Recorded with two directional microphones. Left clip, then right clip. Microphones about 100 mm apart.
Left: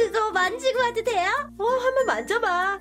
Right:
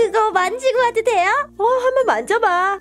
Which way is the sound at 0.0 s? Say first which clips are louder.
Right 6 dB; 45° right (ahead or behind).